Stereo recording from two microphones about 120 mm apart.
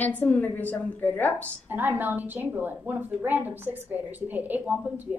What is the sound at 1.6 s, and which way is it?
A woman's voice, 15° right (ahead or behind).